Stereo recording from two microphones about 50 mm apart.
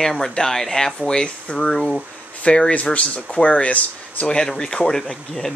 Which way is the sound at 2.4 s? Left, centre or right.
Left.